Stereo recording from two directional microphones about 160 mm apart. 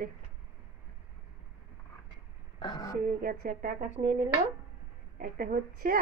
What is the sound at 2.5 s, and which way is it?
Speech, 25° left (ahead or behind).